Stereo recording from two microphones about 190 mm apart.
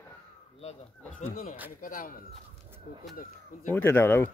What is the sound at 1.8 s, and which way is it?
Speech, 45° left (ahead or behind).